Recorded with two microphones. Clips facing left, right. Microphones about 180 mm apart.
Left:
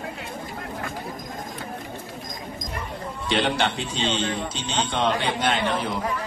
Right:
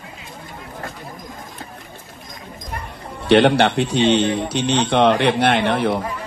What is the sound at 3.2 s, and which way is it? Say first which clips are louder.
A man's voice: right 10 dB; 70° right (ahead or behind).